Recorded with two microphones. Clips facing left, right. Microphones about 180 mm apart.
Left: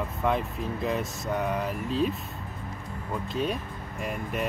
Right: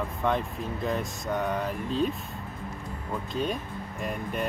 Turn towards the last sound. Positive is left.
turn(degrees=0)  # may be behind; listen again after turning